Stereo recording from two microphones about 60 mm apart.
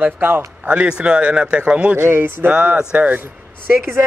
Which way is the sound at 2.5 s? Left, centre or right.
Centre.